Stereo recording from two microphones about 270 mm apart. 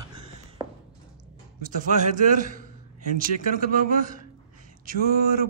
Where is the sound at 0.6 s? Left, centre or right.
Centre.